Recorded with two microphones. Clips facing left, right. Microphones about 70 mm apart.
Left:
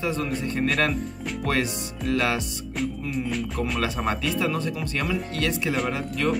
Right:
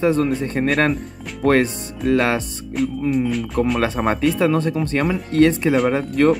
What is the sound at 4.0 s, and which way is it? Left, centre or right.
Speech, right.